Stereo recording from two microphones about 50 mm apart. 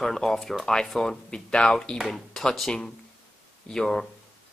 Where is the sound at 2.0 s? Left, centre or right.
Centre.